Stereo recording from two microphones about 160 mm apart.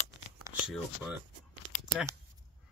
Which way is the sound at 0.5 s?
20° right (ahead or behind).